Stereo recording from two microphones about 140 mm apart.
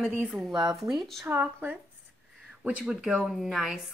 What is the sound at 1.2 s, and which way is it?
Speech, 10° right (ahead or behind).